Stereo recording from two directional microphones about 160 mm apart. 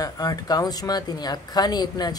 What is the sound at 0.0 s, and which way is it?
A man's voice, 25° left (ahead or behind).